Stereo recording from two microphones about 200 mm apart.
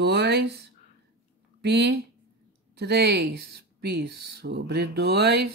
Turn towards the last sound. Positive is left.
turn(degrees=-55)  # may be behind; listen again after turning